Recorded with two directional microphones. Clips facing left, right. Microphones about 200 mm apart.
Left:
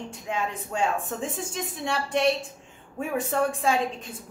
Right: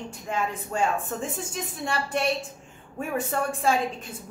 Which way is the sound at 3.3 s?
Centre (ahead or behind).